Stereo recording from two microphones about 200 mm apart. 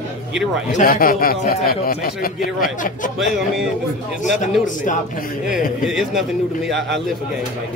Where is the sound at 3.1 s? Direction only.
Centre (ahead or behind).